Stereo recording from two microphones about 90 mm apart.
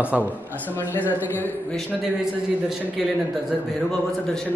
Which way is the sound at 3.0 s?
5° right (ahead or behind).